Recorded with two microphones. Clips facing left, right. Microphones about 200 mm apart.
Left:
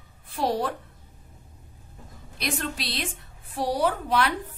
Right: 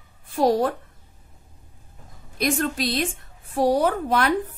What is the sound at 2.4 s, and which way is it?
Speech, 45° right (ahead or behind).